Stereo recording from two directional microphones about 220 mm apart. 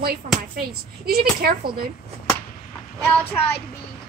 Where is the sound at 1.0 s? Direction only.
45° right (ahead or behind).